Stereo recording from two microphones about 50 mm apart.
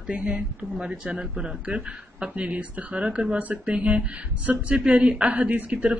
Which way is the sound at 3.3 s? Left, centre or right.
Right.